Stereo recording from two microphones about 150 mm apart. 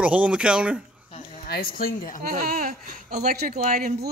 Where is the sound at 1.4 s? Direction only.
85° left.